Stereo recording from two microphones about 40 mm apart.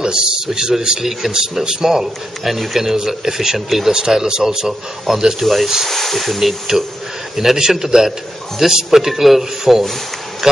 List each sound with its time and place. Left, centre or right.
0.0 s a man's voice: right
5.4 s a man's voice: centre